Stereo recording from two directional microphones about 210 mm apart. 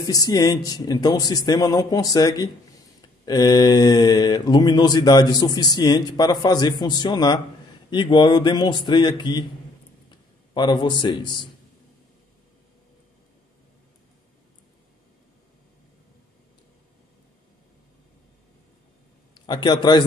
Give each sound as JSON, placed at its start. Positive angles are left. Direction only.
{"t": 0.0, "sound": "speech", "side_deg": 15}
{"t": 10.5, "sound": "speech", "side_deg": 20}
{"t": 19.3, "sound": "a man's voice", "side_deg": 20}